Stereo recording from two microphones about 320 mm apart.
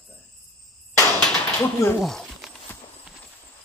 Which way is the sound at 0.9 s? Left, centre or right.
Centre.